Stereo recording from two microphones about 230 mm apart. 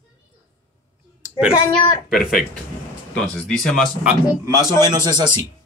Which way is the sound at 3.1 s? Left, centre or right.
Centre.